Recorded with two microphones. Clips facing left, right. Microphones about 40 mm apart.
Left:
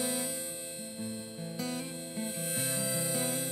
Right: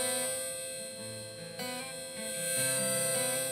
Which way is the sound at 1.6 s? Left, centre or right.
Right.